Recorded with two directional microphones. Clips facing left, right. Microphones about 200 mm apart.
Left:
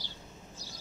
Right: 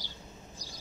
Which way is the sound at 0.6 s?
15° right (ahead or behind).